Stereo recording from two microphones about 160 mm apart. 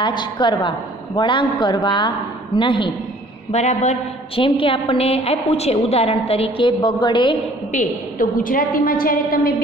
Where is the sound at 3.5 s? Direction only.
45° left (ahead or behind).